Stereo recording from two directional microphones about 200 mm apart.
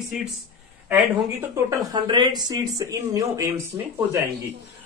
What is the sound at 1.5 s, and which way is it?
Speech, 20° right (ahead or behind).